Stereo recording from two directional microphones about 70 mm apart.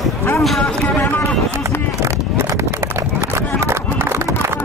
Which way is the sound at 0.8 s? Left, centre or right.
Left.